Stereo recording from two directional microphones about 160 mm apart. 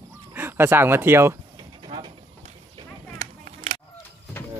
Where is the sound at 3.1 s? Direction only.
50° right (ahead or behind).